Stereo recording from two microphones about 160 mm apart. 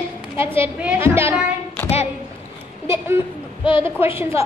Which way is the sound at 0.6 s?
10° right (ahead or behind).